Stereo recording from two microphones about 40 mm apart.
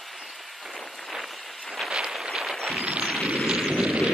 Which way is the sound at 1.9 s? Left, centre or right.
Centre.